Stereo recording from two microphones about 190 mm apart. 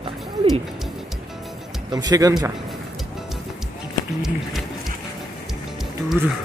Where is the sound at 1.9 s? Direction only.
20° right (ahead or behind).